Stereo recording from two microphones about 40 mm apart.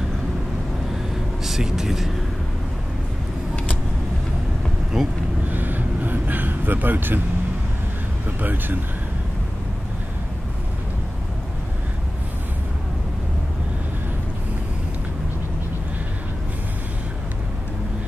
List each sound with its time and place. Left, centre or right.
1.4 s speech: centre
4.9 s speech: centre
5.5 s vehicle: right
8.3 s speech: right